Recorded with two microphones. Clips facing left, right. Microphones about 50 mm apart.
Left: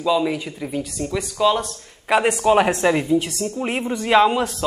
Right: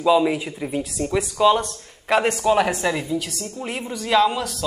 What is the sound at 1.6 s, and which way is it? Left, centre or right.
Speech, centre.